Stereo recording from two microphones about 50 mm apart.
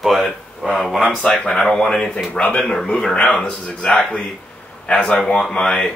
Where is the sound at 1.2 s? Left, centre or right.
Centre.